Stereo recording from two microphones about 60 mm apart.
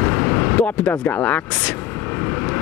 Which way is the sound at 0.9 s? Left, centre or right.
Left.